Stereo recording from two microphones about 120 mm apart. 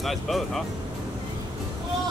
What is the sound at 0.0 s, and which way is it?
Speech, centre (ahead or behind).